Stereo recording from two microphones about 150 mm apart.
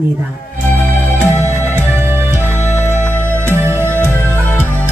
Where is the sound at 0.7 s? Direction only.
15° left (ahead or behind).